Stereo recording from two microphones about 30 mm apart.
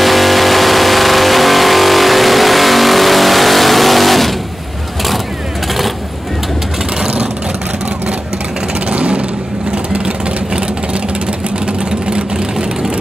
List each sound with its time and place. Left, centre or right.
0.0 s vehicle: centre
8.9 s vehicle: right
11.6 s vehicle: right